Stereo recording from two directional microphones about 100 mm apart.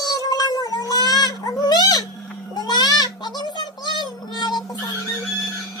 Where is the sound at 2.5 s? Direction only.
45° left (ahead or behind).